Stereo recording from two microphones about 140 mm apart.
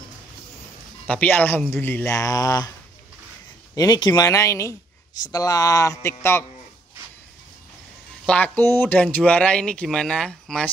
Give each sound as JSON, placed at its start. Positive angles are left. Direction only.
{"t": 1.0, "sound": "speech", "side_deg": 10}
{"t": 3.7, "sound": "a man's voice", "side_deg": 30}
{"t": 8.3, "sound": "speech", "side_deg": 15}